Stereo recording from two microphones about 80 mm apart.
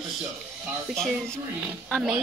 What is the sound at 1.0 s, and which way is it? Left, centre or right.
Speech, centre.